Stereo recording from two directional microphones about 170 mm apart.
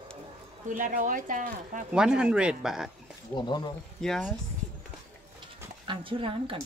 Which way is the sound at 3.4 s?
25° left (ahead or behind).